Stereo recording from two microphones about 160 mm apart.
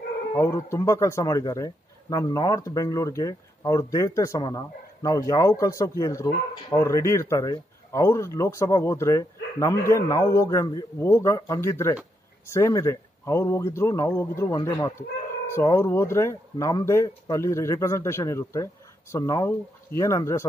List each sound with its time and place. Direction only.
0.3 s a man's voice: 15° left (ahead or behind)